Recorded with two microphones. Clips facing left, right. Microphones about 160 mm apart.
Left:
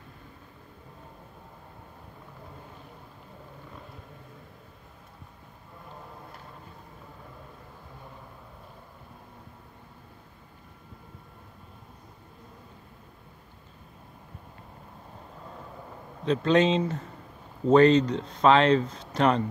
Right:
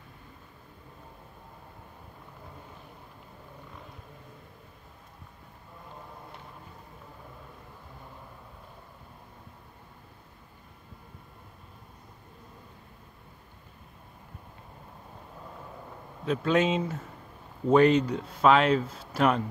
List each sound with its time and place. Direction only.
16.3 s speech: 5° right (ahead or behind)